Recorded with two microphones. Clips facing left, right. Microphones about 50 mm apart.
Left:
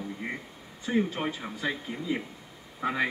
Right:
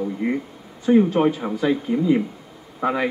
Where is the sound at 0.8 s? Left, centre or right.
Centre.